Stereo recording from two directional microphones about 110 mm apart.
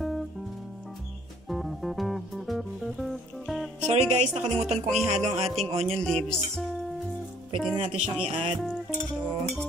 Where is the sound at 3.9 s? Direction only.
90° right.